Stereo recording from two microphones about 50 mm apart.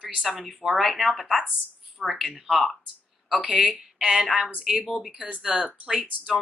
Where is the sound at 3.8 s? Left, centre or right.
Centre.